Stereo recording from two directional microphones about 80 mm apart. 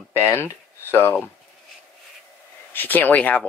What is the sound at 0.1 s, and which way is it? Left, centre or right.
Speech, left.